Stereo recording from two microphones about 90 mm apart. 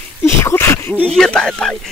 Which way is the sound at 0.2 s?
30° left (ahead or behind).